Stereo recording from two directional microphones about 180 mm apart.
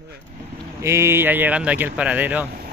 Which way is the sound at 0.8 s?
15° right (ahead or behind).